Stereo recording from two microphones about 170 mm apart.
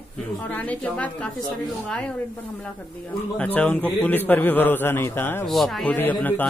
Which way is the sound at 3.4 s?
10° left (ahead or behind).